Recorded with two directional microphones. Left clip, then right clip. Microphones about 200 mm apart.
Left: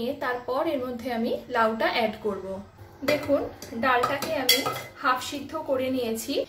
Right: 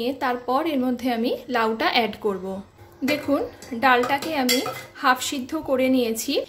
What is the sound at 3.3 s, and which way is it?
A woman's voice, 50° right (ahead or behind).